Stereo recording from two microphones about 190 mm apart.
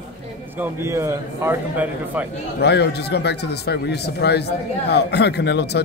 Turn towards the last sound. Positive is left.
turn(degrees=60)  # may be behind; listen again after turning